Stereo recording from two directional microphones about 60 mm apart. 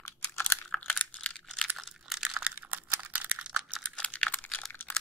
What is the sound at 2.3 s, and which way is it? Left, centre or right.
Computer keyboard, right.